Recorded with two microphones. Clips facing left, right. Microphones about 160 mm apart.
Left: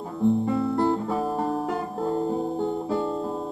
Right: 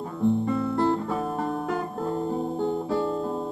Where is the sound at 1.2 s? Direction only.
30° left (ahead or behind).